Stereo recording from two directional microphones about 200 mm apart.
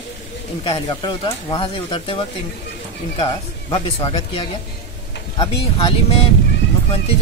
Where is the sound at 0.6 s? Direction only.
20° left (ahead or behind).